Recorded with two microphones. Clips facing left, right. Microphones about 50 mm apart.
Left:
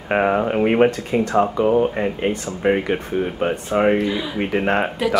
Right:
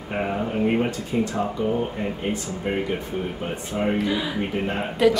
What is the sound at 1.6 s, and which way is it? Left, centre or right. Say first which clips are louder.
Speech: left 7 dB; left.